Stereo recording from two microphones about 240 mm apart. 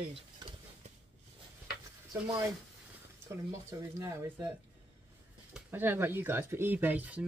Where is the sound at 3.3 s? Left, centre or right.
Centre.